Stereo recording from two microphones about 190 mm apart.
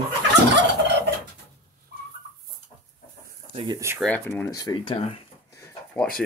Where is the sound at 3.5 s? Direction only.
25° right (ahead or behind).